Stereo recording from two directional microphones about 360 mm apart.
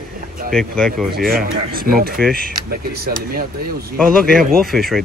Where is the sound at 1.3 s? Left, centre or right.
Right.